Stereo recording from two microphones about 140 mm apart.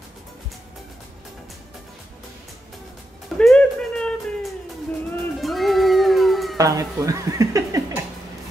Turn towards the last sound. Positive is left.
turn(degrees=-25)  # may be behind; listen again after turning